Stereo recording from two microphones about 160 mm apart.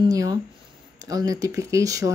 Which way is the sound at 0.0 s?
25° right (ahead or behind).